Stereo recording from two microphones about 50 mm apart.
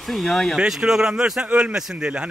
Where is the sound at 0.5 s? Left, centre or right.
Centre.